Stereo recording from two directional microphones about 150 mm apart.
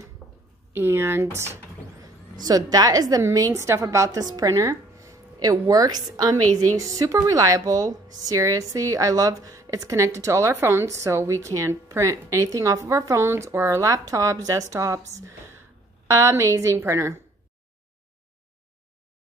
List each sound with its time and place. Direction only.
0.2 s a sound: centre (ahead or behind)
0.7 s speech: 15° right (ahead or behind)
2.4 s a woman's voice: 25° right (ahead or behind)